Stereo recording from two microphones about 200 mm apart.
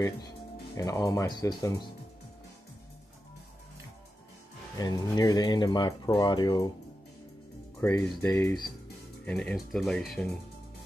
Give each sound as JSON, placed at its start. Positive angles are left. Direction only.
{"t": 0.7, "sound": "speech", "side_deg": 15}
{"t": 4.7, "sound": "speech", "side_deg": 15}
{"t": 7.8, "sound": "speech", "side_deg": 15}
{"t": 9.2, "sound": "speech", "side_deg": 5}